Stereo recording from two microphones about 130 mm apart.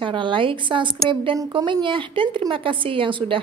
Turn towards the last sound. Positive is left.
turn(degrees=-40)  # may be behind; listen again after turning